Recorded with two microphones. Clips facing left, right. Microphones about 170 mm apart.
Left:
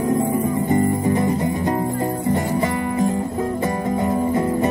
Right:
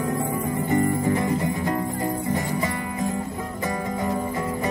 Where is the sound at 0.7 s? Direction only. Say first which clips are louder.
Left 1 dB; 25° left (ahead or behind).